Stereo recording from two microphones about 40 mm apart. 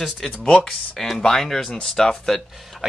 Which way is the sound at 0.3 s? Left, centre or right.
Left.